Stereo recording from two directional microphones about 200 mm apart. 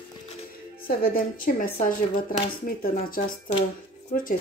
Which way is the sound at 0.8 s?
45° left (ahead or behind).